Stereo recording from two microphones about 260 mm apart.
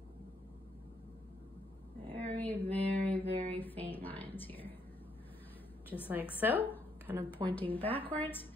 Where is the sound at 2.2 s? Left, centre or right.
Centre.